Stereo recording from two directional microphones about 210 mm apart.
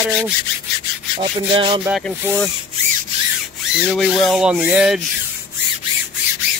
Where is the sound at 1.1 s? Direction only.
25° right (ahead or behind).